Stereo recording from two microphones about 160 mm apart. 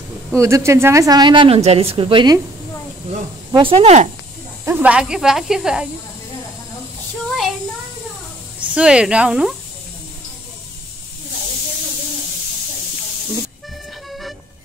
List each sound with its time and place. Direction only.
0.4 s a woman's voice: 15° right (ahead or behind)
3.5 s speech: 35° right (ahead or behind)
4.6 s speech: 10° right (ahead or behind)
8.5 s speech: 10° right (ahead or behind)